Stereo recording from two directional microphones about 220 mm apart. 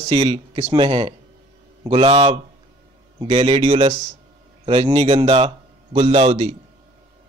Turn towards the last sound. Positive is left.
turn(degrees=-25)  # may be behind; listen again after turning